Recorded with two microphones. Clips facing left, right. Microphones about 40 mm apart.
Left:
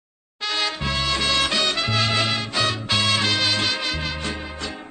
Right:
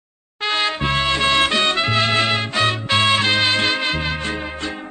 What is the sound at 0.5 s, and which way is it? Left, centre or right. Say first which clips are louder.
Music: right 5 dB; right.